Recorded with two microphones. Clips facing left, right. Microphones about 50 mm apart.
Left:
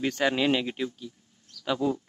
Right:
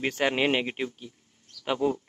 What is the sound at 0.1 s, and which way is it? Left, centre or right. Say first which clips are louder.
Speech: right 1 dB; right.